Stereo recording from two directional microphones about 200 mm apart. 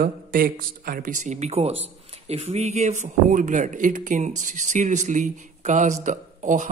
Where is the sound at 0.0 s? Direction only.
45° right (ahead or behind).